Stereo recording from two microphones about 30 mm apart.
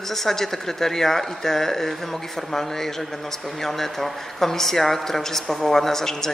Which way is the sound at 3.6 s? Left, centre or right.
Centre.